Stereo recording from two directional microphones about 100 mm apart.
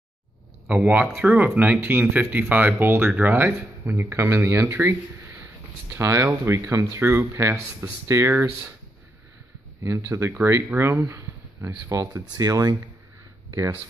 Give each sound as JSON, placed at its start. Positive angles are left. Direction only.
{"t": 0.7, "sound": "speech", "side_deg": -20}
{"t": 9.8, "sound": "speech", "side_deg": -30}
{"t": 13.5, "sound": "a sound", "side_deg": -30}